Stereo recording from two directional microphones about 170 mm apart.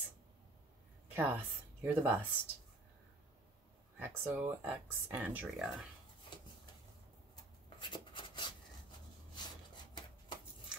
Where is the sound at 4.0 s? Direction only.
10° right (ahead or behind).